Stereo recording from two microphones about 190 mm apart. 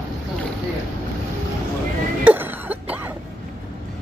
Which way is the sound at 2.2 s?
10° right (ahead or behind).